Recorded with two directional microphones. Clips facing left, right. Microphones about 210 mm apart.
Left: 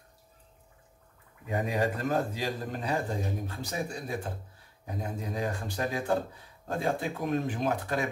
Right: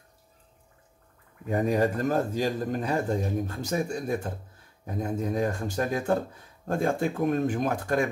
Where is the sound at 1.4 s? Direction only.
45° right (ahead or behind).